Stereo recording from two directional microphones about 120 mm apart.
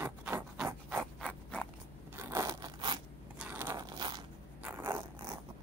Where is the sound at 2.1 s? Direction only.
25° right (ahead or behind).